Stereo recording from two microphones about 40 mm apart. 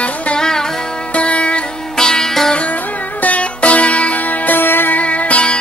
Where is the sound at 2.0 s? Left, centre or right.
Centre.